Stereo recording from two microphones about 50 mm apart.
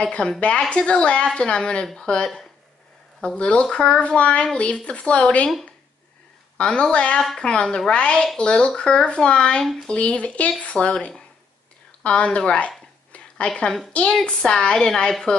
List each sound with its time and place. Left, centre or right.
0.4 s speech: left
6.6 s a woman's voice: centre
12.0 s a sound: left
13.5 s a woman's voice: centre